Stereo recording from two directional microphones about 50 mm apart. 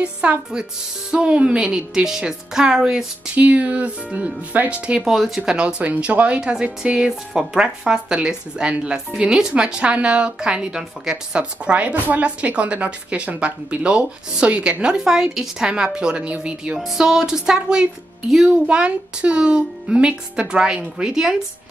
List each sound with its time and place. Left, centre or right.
0.0 s a woman's voice: right
3.3 s speech: right
5.1 s a woman's voice: centre
11.3 s speech: right
16.7 s a woman's voice: centre